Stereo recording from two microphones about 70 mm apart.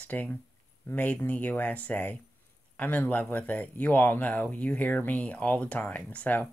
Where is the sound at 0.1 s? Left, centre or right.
Left.